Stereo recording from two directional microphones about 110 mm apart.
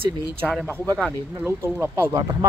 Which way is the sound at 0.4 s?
Centre (ahead or behind).